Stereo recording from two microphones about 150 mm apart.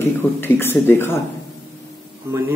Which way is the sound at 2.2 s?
15° right (ahead or behind).